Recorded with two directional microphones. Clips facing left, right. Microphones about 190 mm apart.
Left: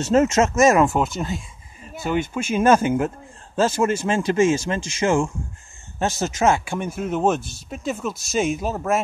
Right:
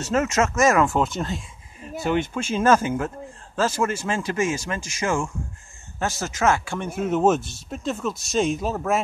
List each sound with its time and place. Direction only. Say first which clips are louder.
0.0 s speech: left 5 dB; 25° left (ahead or behind)
0.9 s speech: left 1 dB; 5° left (ahead or behind)
7.0 s speech: right 2 dB; centre (ahead or behind)